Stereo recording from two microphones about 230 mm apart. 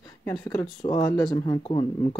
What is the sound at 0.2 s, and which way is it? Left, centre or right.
Speech, centre.